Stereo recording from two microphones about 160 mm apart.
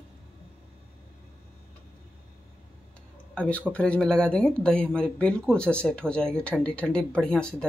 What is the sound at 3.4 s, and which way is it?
Speech, 10° left (ahead or behind).